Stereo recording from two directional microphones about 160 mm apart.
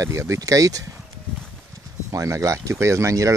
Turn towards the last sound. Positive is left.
turn(degrees=-20)  # may be behind; listen again after turning